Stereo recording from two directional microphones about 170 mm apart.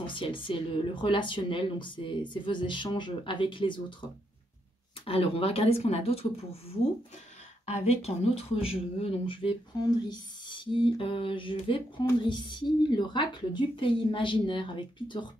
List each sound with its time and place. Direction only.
0.0 s speech: 30° left (ahead or behind)
5.0 s speech: 35° left (ahead or behind)